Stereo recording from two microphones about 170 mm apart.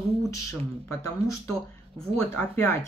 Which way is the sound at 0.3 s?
15° left (ahead or behind).